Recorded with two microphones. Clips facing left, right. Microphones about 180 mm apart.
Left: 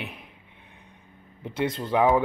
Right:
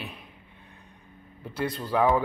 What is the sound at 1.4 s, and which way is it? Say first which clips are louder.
Speech: left 3 dB; 20° left (ahead or behind).